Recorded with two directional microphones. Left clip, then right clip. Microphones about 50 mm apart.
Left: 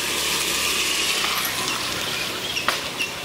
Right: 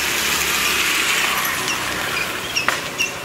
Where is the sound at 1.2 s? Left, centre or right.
Centre.